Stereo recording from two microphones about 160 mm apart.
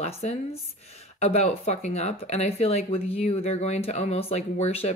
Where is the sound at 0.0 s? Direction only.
40° left (ahead or behind).